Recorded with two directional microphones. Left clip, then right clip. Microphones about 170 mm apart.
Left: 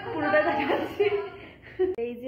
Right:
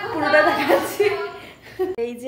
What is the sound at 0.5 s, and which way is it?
A woman's voice, 25° right (ahead or behind).